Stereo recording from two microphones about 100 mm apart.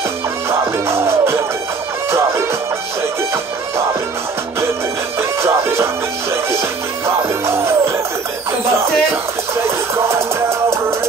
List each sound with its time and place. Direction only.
0.5 s music: 25° right (ahead or behind)
5.4 s music: 25° right (ahead or behind)
7.4 s music: 25° right (ahead or behind)
9.1 s music: 25° right (ahead or behind)